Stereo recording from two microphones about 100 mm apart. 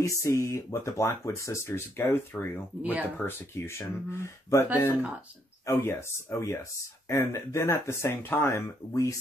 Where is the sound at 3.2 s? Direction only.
25° left (ahead or behind).